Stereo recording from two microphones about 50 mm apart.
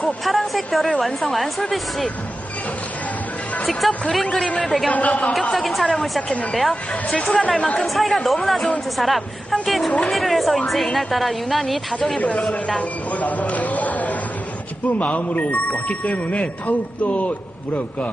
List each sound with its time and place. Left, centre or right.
0.0 s a sound: centre
0.7 s a woman's voice: centre
4.1 s a woman's voice: centre
4.9 s speech: left
5.5 s a woman's voice: centre
7.3 s speech: left
7.8 s a woman's voice: centre
13.1 s speech: left